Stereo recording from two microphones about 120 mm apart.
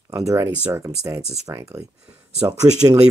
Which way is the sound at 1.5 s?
25° right (ahead or behind).